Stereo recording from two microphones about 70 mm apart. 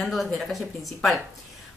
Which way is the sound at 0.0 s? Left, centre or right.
Centre.